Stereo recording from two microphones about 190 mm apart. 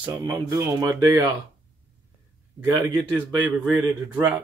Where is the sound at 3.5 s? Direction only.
5° right (ahead or behind).